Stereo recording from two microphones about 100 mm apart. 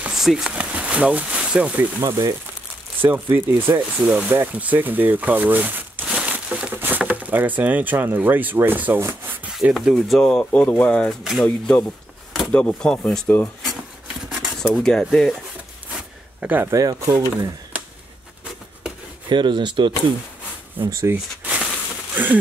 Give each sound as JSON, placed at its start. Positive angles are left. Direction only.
{"t": 0.0, "sound": "speech", "side_deg": -5}
{"t": 2.0, "sound": "speech", "side_deg": -35}
{"t": 3.0, "sound": "speech", "side_deg": -20}
{"t": 9.5, "sound": "speech", "side_deg": -5}
{"t": 14.3, "sound": "speech", "side_deg": -5}
{"t": 16.3, "sound": "speech", "side_deg": -15}
{"t": 16.7, "sound": "speech", "side_deg": -35}
{"t": 19.2, "sound": "speech", "side_deg": -50}
{"t": 20.9, "sound": "speech", "side_deg": -25}
{"t": 22.1, "sound": "a sound", "side_deg": -15}